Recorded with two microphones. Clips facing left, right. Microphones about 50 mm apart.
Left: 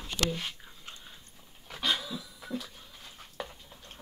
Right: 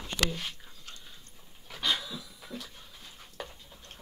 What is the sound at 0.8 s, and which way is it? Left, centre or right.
Dog, centre.